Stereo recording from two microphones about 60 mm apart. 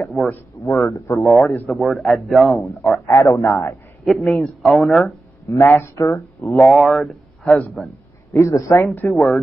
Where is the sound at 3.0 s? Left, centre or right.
Left.